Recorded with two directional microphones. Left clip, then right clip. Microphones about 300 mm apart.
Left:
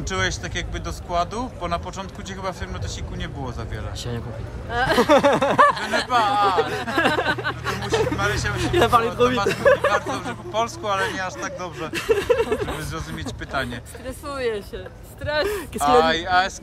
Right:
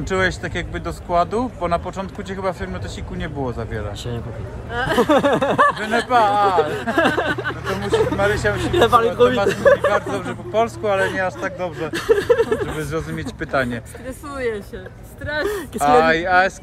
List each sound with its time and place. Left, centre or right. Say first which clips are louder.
0.1 s speech: right 4 dB; centre
4.7 s speech: even; left
5.0 s speech: even; centre
14.0 s speech: right 1 dB; left
15.4 s speech: right 6 dB; centre